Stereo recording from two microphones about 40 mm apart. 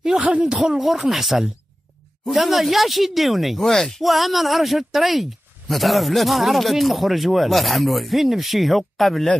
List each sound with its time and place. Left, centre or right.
0.2 s speech: right
0.5 s speech: centre